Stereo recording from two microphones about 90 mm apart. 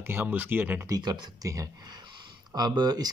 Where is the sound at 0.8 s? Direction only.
45° right (ahead or behind).